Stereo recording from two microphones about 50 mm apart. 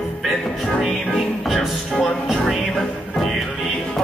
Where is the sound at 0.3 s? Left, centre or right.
Left.